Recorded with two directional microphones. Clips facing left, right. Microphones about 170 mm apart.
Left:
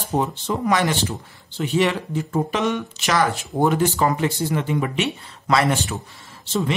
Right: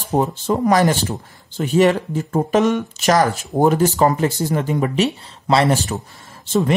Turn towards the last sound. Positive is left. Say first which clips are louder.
# right 6 dB
turn(degrees=-45)  # may be behind; listen again after turning